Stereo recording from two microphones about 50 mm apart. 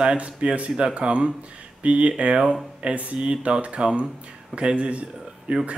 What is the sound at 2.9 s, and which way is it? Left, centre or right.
Speech, right.